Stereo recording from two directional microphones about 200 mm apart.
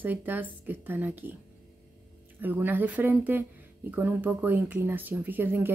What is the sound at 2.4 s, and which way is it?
Speech, 10° right (ahead or behind).